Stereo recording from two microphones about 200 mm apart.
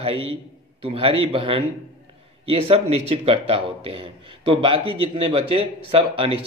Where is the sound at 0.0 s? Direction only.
30° right (ahead or behind).